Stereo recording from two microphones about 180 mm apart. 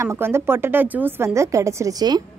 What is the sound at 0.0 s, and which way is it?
A woman's voice, 15° right (ahead or behind).